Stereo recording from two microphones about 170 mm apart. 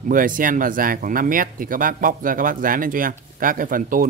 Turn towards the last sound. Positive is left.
turn(degrees=-55)  # may be behind; listen again after turning